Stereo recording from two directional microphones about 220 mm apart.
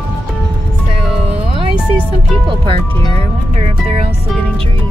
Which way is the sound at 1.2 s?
25° right (ahead or behind).